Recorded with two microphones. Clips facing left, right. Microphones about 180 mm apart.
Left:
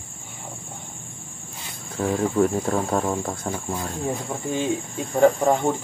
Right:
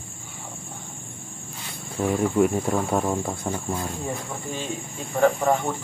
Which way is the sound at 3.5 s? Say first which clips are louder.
Even; 10° left (ahead or behind).